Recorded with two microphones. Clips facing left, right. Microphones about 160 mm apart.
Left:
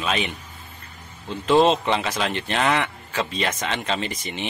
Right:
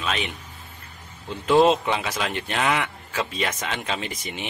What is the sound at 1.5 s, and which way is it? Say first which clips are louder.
Speech: even; 5° right (ahead or behind).